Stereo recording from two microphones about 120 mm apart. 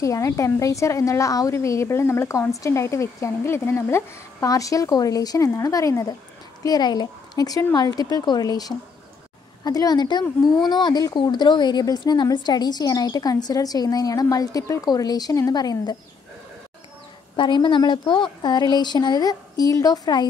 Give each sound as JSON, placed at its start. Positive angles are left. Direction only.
{"t": 0.0, "sound": "a woman's voice", "side_deg": 25}
{"t": 17.4, "sound": "a woman's voice", "side_deg": 40}